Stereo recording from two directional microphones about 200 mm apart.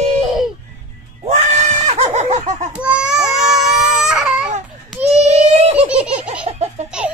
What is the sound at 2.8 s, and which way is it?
Baby cry, 5° right (ahead or behind).